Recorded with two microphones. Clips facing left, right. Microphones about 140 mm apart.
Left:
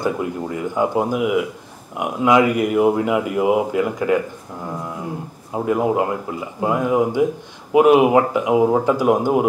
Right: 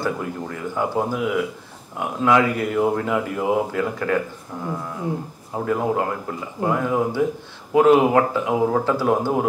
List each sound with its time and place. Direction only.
0.0 s speech: 20° left (ahead or behind)
5.5 s speech: 15° left (ahead or behind)